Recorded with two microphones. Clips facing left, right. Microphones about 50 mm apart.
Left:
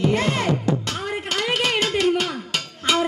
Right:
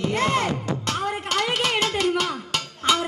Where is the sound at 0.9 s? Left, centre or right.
Left.